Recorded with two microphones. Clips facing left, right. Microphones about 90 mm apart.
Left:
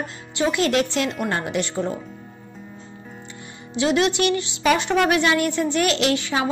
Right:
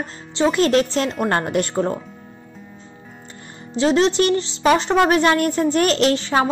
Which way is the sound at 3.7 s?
35° right (ahead or behind).